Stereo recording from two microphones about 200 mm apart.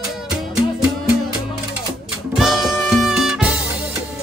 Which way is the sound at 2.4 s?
Centre (ahead or behind).